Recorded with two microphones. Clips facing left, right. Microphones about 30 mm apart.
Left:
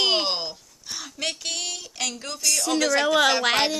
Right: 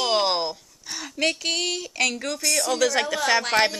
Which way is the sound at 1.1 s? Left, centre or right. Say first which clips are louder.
Right 6 dB; right.